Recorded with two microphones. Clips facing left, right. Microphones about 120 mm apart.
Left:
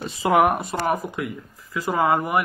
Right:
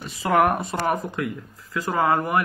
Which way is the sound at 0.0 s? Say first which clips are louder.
Left 4 dB; 25° left (ahead or behind).